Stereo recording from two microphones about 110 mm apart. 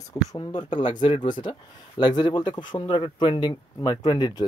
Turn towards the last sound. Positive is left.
turn(degrees=40)  # may be behind; listen again after turning